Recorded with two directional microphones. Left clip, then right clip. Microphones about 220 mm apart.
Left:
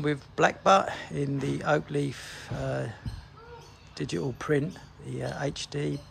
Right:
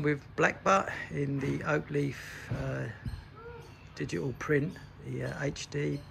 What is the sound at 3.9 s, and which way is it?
Speech, 10° left (ahead or behind).